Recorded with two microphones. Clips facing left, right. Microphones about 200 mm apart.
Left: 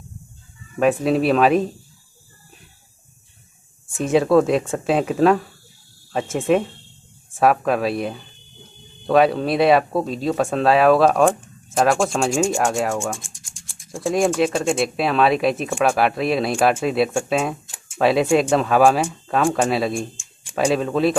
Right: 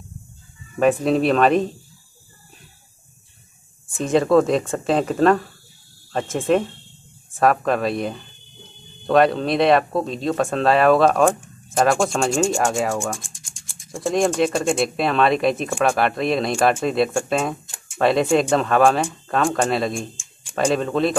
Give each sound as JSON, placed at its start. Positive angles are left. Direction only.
{"t": 0.7, "sound": "speech", "side_deg": 5}
{"t": 3.9, "sound": "speech", "side_deg": 5}